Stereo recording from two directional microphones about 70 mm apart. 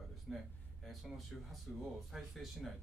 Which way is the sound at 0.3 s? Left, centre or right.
Centre.